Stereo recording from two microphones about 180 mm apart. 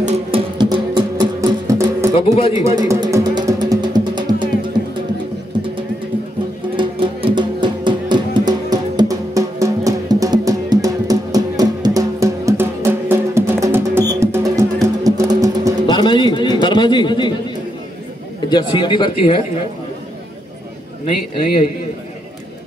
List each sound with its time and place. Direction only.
0.0 s music: 35° right (ahead or behind); by 2.0 s 15° right (ahead or behind)
2.1 s speech: 30° left (ahead or behind)
2.6 s music: 20° right (ahead or behind)
6.8 s music: 25° right (ahead or behind)
15.9 s pigeon: 25° left (ahead or behind)
16.6 s a sound: 25° left (ahead or behind)
18.5 s a sound: 25° left (ahead or behind)